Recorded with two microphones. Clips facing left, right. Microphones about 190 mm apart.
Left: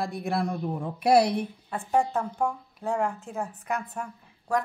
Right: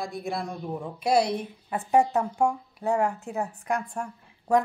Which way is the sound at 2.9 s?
Centre (ahead or behind).